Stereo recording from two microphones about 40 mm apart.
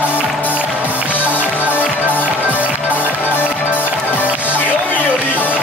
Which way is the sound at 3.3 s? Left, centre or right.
Left.